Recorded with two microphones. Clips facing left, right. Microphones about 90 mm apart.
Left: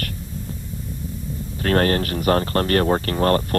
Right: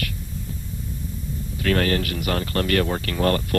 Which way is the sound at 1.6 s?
40° left (ahead or behind).